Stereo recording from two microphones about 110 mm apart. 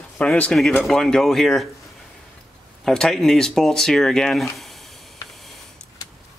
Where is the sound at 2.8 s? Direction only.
5° left (ahead or behind).